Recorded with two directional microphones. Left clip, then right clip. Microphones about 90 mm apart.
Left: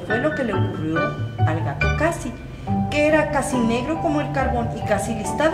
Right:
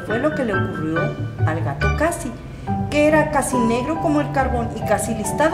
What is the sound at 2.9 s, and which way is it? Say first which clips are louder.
A woman's voice: right 2 dB; 30° right (ahead or behind).